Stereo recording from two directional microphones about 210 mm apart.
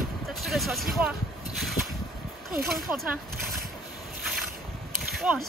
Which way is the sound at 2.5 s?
Centre (ahead or behind).